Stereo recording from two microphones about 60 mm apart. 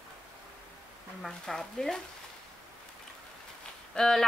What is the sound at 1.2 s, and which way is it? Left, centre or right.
Speech, centre.